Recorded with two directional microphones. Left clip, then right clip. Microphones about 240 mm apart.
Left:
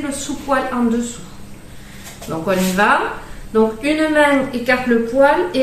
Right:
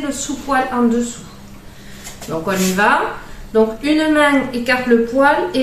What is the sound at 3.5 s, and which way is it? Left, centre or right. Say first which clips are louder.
A woman's voice: right 1 dB; centre.